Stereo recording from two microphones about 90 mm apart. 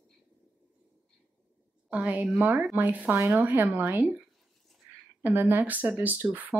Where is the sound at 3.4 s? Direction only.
20° right (ahead or behind).